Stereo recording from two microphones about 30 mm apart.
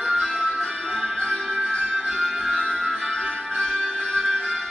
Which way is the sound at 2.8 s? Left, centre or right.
Left.